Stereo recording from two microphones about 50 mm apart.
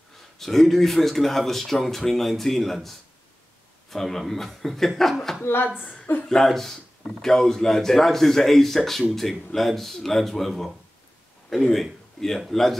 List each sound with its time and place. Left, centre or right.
0.4 s speech: centre
5.4 s speech: left
6.2 s a man's voice: centre